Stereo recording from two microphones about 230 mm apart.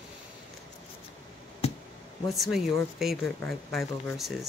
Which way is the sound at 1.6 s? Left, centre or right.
Left.